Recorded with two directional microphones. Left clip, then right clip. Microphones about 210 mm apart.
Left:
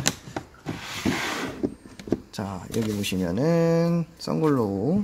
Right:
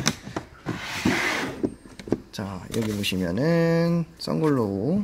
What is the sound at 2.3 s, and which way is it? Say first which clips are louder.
Speech: even; 15° left (ahead or behind).